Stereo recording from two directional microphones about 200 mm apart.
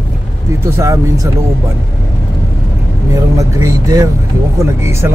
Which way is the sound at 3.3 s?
15° right (ahead or behind).